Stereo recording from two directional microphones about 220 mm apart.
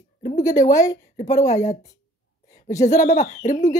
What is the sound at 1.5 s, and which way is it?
Speech, 30° left (ahead or behind).